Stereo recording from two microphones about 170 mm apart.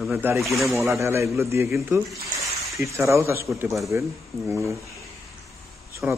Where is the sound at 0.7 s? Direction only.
15° right (ahead or behind).